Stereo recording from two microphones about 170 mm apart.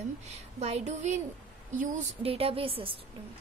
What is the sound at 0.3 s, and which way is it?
Speech, 40° right (ahead or behind).